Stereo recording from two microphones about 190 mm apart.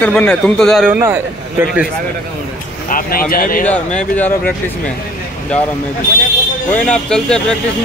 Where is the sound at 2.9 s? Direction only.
50° left (ahead or behind).